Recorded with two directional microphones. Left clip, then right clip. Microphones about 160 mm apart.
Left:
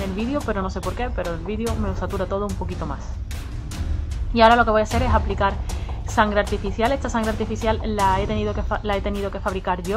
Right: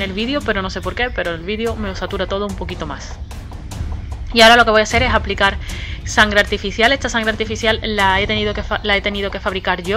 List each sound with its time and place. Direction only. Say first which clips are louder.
0.0 s speech: right 6 dB; 35° right (ahead or behind)
2.2 s speech: right 4 dB; 30° right (ahead or behind)
4.3 s speech: right 6 dB; 40° right (ahead or behind)
7.2 s speech: right 6 dB; 30° right (ahead or behind)